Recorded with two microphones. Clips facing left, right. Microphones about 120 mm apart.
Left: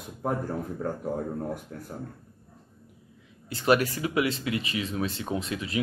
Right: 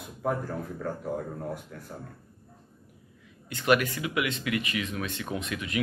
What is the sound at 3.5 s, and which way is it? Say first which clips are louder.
Speech: left 1 dB; 35° left (ahead or behind).